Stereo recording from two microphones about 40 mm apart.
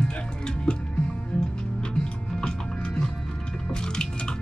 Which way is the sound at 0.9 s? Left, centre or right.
Left.